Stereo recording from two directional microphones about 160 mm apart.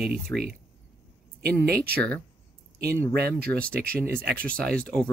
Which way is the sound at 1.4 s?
85° right.